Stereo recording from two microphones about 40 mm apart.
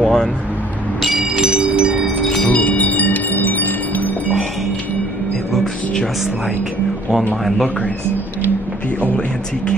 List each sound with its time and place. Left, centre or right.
0.0 s music: centre
1.3 s music: right
2.4 s chime: left
5.5 s music: centre